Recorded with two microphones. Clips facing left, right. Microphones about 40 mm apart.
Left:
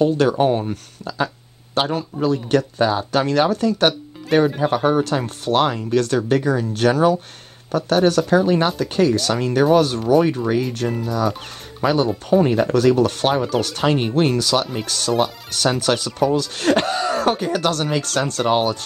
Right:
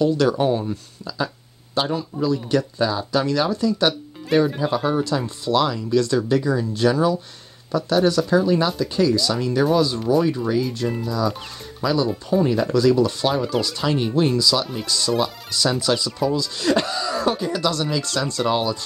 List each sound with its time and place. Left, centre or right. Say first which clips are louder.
0.0 s speech: left 2 dB; left